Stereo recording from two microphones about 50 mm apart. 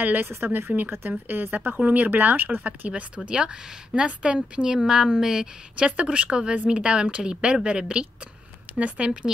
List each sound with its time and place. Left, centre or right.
0.0 s speech: right
3.3 s speech: right
5.8 s speech: right